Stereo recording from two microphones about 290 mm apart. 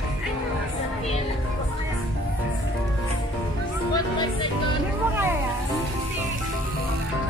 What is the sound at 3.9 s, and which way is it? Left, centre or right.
Music, centre.